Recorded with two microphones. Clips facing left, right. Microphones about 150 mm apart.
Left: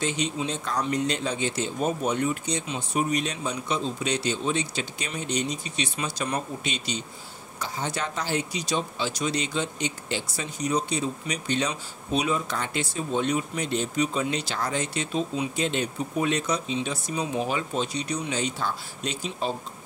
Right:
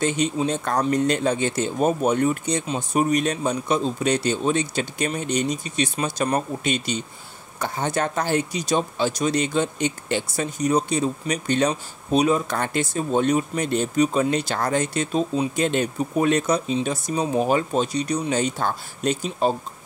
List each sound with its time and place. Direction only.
0.0 s speech: 50° right (ahead or behind)